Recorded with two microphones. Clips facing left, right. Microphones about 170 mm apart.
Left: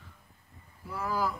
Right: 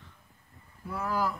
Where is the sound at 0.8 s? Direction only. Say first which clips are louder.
Right 1 dB; centre (ahead or behind).